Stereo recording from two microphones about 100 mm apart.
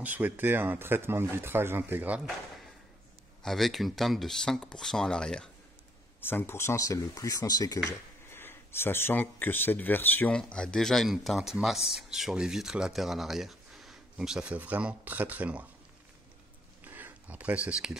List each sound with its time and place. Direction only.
0.0 s speech: 15° right (ahead or behind)
3.4 s speech: centre (ahead or behind)
6.2 s speech: 25° left (ahead or behind); by 7.8 s 40° left (ahead or behind)
8.3 s speech: 25° left (ahead or behind)
10.3 s speech: 10° left (ahead or behind); by 15.6 s 15° right (ahead or behind)
16.8 s a sound: 15° right (ahead or behind)